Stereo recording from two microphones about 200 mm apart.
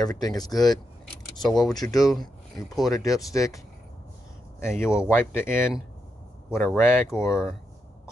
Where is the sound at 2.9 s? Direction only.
15° left (ahead or behind).